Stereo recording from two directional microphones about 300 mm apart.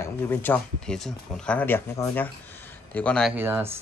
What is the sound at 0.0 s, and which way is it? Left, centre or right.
Speech, centre.